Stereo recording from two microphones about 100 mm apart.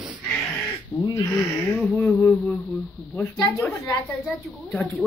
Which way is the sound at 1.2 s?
30° left (ahead or behind).